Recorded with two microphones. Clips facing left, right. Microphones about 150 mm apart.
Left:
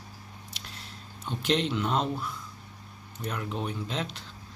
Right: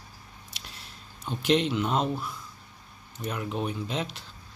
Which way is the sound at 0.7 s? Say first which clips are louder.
Left 2 dB; 5° right (ahead or behind).